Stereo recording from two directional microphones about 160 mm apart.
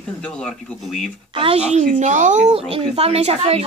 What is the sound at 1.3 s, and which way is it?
Speech, 35° right (ahead or behind).